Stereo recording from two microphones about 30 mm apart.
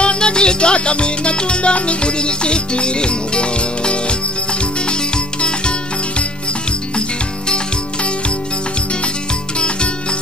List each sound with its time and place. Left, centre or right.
0.0 s music: left